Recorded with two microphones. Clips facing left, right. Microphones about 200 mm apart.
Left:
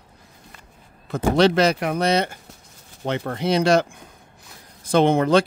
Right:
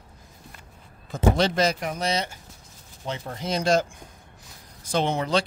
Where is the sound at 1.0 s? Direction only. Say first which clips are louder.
Left 5 dB; 70° left (ahead or behind).